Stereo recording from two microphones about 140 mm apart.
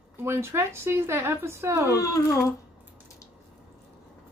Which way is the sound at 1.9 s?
25° left (ahead or behind).